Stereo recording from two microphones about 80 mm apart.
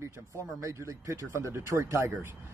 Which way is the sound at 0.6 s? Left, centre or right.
Right.